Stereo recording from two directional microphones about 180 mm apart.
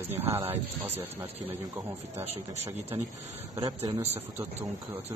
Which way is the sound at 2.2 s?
35° right (ahead or behind).